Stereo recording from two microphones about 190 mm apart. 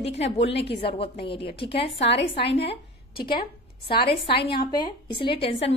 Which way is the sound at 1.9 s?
65° left (ahead or behind).